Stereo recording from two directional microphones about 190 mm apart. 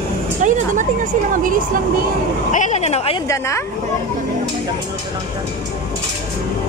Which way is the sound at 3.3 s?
15° left (ahead or behind).